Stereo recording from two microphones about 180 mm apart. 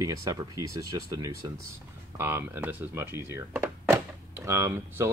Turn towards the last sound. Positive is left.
turn(degrees=-15)  # may be behind; listen again after turning